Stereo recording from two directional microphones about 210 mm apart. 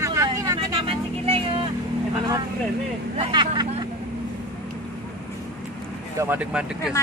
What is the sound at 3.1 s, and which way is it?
Speech, 25° right (ahead or behind).